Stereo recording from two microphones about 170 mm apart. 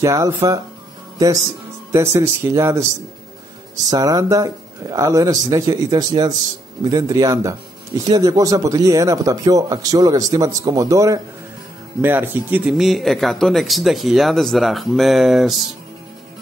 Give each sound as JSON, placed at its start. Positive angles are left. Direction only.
{"t": 0.0, "sound": "a man's voice", "side_deg": -20}
{"t": 1.9, "sound": "speech", "side_deg": -15}
{"t": 3.9, "sound": "a man's voice", "side_deg": -20}